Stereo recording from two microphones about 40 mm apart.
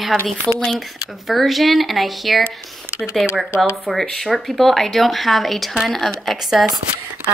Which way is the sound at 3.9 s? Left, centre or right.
Centre.